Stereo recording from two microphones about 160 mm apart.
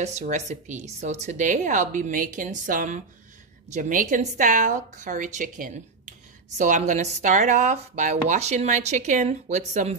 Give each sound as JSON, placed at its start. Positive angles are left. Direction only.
{"t": 0.0, "sound": "speech", "side_deg": -45}